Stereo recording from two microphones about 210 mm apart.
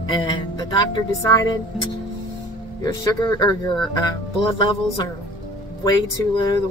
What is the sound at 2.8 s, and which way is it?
Speech, 15° left (ahead or behind).